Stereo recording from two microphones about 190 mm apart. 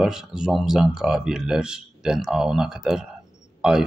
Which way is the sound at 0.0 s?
5° right (ahead or behind).